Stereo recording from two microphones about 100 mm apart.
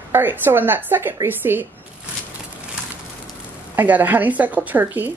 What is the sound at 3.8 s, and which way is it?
Speech, 20° right (ahead or behind).